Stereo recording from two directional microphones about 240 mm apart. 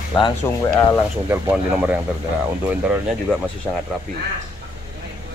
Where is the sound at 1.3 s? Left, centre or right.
Centre.